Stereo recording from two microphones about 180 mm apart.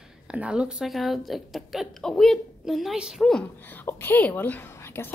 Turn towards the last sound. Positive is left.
turn(degrees=15)  # may be behind; listen again after turning